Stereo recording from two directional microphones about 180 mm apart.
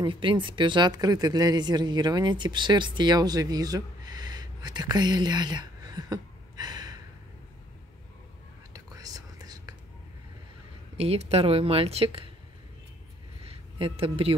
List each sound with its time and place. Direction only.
0.0 s speech: 30° right (ahead or behind)
8.7 s whispering: 20° right (ahead or behind)
11.0 s speech: 35° right (ahead or behind)
13.5 s a sound: 30° right (ahead or behind)